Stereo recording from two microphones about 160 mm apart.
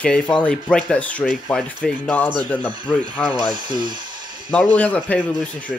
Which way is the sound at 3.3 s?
30° right (ahead or behind).